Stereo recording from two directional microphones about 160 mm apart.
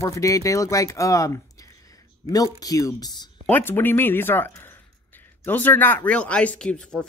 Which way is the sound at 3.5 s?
15° left (ahead or behind).